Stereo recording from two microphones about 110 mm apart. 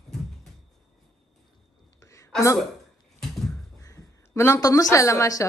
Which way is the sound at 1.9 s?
25° left (ahead or behind).